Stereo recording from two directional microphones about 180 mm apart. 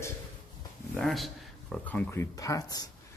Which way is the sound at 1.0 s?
Centre (ahead or behind).